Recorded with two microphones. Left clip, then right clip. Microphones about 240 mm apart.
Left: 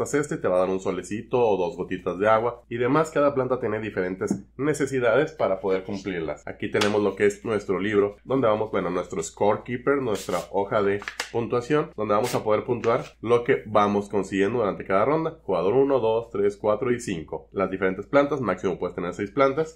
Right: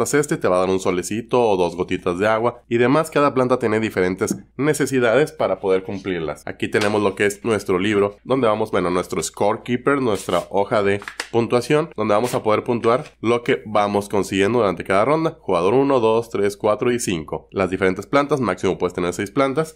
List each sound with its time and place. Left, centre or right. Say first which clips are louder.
0.0 s speech: right 6 dB; right